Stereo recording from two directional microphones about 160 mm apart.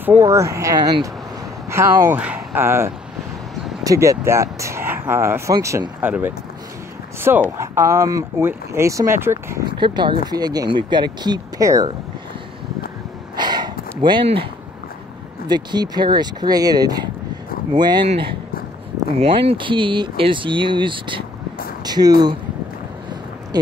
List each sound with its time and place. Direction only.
0.0 s speech: 15° right (ahead or behind)
1.7 s speech: 15° right (ahead or behind)
9.7 s speech: 30° right (ahead or behind)
13.4 s a sound: 25° right (ahead or behind)
15.4 s speech: 25° right (ahead or behind)
19.1 s speech: 35° right (ahead or behind)
23.5 s speech: 25° right (ahead or behind)